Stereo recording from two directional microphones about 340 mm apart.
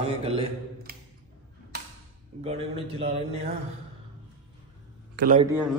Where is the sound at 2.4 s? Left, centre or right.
Centre.